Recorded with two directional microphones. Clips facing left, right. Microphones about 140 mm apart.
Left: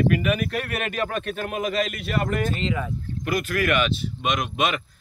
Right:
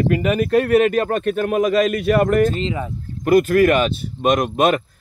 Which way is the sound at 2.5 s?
30° right (ahead or behind).